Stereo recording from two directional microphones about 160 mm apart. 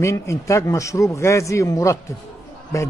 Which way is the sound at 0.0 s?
15° left (ahead or behind).